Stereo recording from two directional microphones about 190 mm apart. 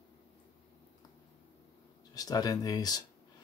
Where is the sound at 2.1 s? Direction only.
20° left (ahead or behind).